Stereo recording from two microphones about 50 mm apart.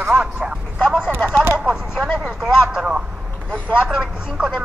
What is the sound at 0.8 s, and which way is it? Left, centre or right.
Speech, centre.